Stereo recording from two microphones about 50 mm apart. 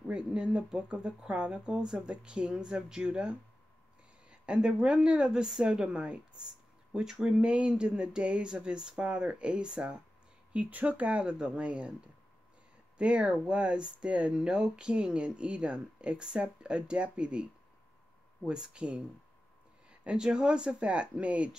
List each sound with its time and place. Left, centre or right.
0.1 s speech: centre
10.5 s speech: right
12.9 s speech: right
18.5 s speech: centre